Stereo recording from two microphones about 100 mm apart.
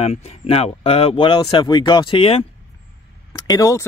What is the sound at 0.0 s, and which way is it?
Speech, 90° left.